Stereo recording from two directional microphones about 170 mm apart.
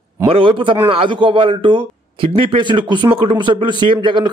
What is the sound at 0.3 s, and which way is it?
A man's voice, 30° right (ahead or behind).